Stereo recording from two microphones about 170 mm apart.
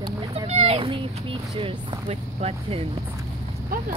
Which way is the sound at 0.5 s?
35° right (ahead or behind).